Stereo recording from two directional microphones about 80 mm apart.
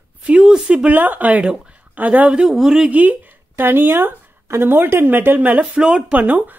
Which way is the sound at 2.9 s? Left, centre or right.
Centre.